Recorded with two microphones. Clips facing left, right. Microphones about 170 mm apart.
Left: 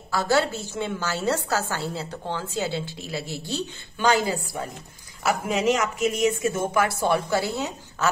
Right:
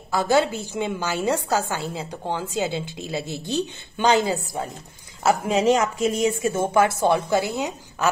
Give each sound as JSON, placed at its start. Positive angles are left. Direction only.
{"t": 0.1, "sound": "a woman's voice", "side_deg": -15}